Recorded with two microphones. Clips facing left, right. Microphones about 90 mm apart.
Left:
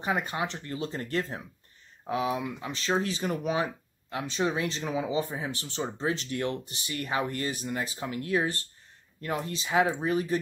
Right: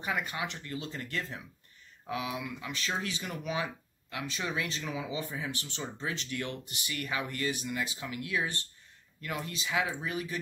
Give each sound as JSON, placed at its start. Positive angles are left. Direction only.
{"t": 0.0, "sound": "speech", "side_deg": 30}